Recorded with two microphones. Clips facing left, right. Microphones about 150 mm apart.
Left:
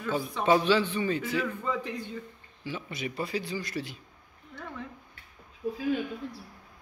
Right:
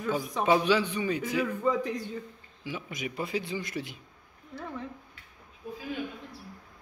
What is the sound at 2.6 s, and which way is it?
Speech, 15° right (ahead or behind).